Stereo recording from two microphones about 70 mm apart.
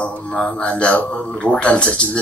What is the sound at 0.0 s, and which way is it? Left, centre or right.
A man's voice, centre.